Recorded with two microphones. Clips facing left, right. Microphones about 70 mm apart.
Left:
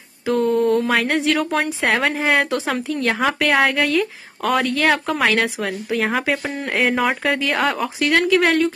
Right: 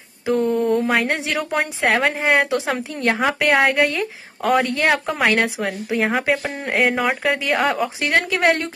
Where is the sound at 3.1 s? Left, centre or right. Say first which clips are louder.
Right 2 dB; centre.